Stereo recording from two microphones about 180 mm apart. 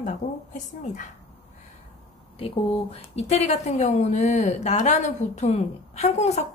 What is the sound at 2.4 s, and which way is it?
A woman's voice, 35° left (ahead or behind).